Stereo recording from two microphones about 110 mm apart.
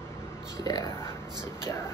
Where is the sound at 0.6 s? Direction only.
35° left (ahead or behind).